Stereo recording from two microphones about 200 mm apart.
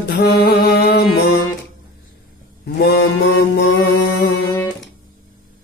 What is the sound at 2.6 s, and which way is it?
Mantra, 50° left (ahead or behind).